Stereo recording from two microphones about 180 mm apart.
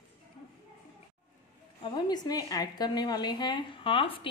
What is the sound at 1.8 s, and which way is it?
A woman's voice, 25° left (ahead or behind).